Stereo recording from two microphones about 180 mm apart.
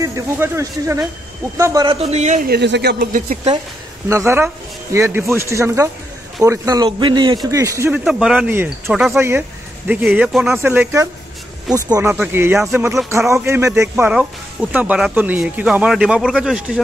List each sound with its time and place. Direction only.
0.0 s a man's voice: 15° right (ahead or behind)
2.0 s a man's voice: 35° right (ahead or behind)
2.4 s speech: 65° right (ahead or behind); by 3.5 s 45° right (ahead or behind)
4.1 s a man's voice: 15° right (ahead or behind)
8.0 s speech: centre (ahead or behind)
10.6 s a man's voice: 10° right (ahead or behind)
12.1 s speech: 10° right (ahead or behind)